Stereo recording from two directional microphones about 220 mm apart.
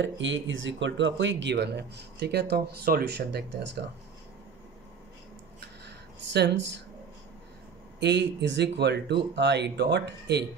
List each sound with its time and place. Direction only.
0.0 s speech: 55° right (ahead or behind)
5.9 s a sound: 50° right (ahead or behind)
8.0 s speech: 50° right (ahead or behind)